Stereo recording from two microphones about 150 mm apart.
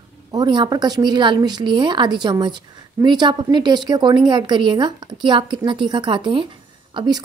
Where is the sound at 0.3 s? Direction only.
30° right (ahead or behind).